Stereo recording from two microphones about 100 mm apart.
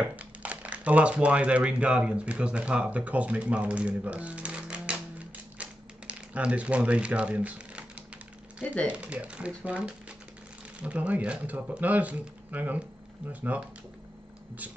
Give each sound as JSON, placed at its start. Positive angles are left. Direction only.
{"t": 0.1, "sound": "speech", "side_deg": -15}
{"t": 5.6, "sound": "typewriter", "side_deg": -15}
{"t": 8.8, "sound": "speech", "side_deg": -10}